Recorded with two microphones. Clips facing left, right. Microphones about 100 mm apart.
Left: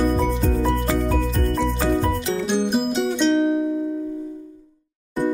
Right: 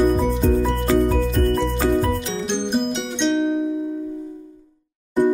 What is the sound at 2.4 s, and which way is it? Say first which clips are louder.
Music: even; 5° left (ahead or behind).